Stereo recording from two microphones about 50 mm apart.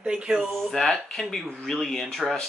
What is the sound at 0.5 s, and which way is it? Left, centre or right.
Speech, centre.